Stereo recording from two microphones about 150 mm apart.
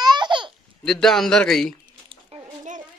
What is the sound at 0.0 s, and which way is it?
Baby laughter, 30° right (ahead or behind).